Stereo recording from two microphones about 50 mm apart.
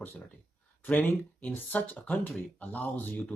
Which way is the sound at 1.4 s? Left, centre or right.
Left.